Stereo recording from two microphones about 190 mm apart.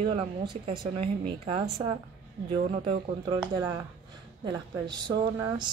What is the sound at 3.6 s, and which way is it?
Speech, 15° right (ahead or behind).